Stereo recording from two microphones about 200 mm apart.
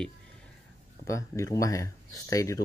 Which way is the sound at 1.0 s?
15° left (ahead or behind).